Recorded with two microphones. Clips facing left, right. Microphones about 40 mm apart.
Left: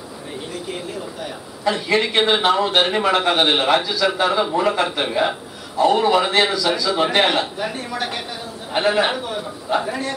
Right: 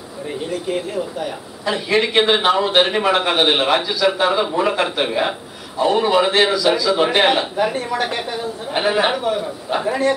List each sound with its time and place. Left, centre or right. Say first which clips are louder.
1.7 s a man's voice: right 1 dB; centre